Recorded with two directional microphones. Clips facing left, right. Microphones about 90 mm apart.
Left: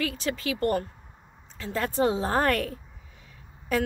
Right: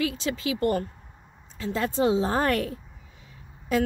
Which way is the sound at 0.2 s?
20° right (ahead or behind).